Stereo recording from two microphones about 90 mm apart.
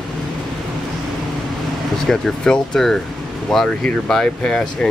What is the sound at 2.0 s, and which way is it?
Speech, 5° left (ahead or behind).